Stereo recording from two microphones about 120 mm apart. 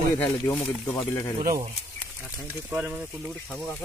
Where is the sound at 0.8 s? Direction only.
25° left (ahead or behind).